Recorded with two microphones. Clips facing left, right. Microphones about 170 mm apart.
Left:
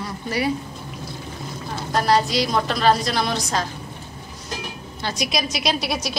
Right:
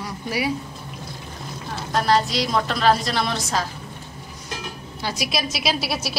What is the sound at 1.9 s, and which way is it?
A woman's voice, centre (ahead or behind).